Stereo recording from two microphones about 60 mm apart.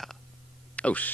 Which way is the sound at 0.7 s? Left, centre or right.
Left.